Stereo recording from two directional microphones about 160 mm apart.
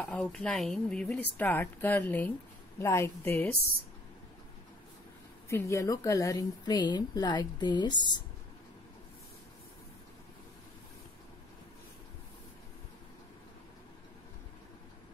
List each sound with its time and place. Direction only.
0.0 s a woman's voice: 5° left (ahead or behind)
5.5 s a woman's voice: 20° left (ahead or behind)